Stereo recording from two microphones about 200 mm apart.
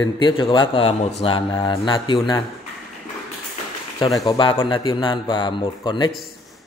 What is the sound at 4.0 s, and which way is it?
Speech, 20° left (ahead or behind).